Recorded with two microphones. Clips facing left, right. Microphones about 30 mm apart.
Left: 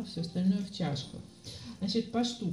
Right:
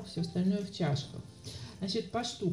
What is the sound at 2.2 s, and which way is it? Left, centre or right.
Speech, left.